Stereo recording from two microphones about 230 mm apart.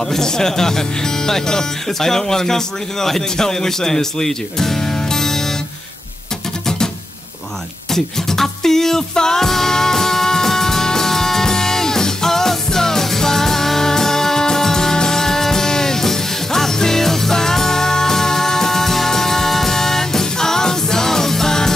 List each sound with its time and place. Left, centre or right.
0.0 s speech: centre
7.9 s music: centre